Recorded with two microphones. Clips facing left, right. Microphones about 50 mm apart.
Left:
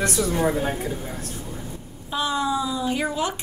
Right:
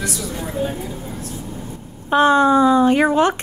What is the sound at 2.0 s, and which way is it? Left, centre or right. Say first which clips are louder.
A woman's voice: right 11 dB; right.